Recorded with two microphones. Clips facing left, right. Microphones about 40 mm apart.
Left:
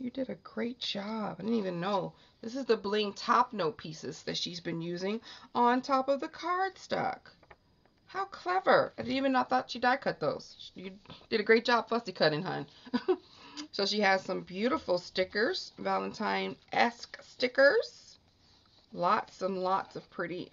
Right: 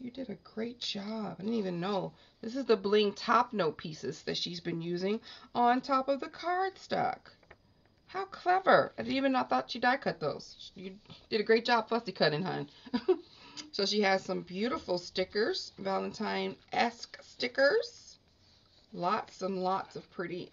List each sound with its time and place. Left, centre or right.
0.0 s speech: centre
2.4 s speech: centre
10.2 s speech: centre
11.8 s speech: centre
18.9 s speech: centre